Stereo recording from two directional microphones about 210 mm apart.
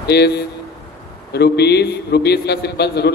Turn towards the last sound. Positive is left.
turn(degrees=50)  # may be behind; listen again after turning